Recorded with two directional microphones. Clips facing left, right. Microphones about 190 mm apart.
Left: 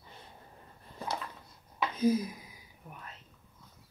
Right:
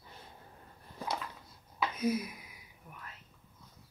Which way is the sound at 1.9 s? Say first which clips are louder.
Left 6 dB; 30° left (ahead or behind).